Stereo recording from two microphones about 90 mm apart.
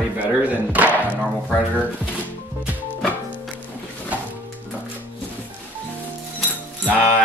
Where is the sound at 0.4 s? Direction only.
20° right (ahead or behind).